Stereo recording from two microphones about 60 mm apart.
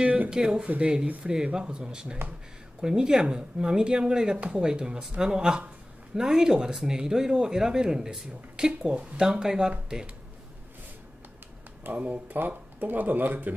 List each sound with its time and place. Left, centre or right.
0.0 s a sound: right
0.3 s speech: centre
11.8 s speech: right